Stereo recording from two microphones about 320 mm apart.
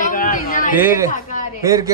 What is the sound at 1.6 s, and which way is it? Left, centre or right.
Speech, centre.